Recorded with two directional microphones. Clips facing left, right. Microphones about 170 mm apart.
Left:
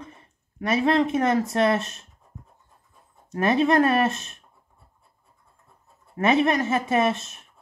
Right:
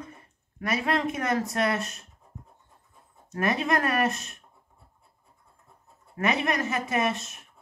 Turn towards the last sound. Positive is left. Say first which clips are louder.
# left 5 dB
turn(degrees=25)  # may be behind; listen again after turning